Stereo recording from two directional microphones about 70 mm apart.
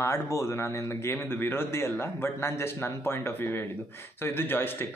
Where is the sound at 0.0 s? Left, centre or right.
Left.